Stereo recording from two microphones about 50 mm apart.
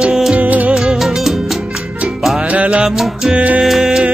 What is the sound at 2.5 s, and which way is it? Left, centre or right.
Music, right.